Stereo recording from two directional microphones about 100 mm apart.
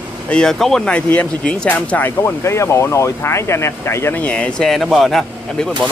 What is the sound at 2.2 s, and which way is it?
Speech, 30° left (ahead or behind).